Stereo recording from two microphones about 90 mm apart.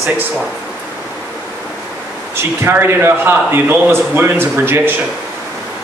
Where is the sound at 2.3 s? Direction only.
25° right (ahead or behind).